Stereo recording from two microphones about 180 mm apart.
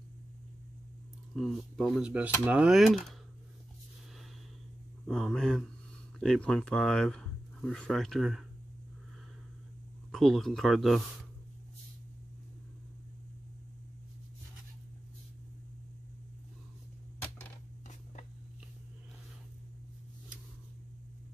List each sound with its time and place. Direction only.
1.3 s speech: centre (ahead or behind)
5.0 s speech: centre (ahead or behind)
10.1 s speech: centre (ahead or behind)